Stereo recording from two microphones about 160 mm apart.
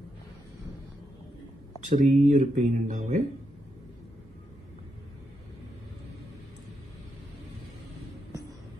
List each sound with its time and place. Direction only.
1.9 s speech: 55° right (ahead or behind)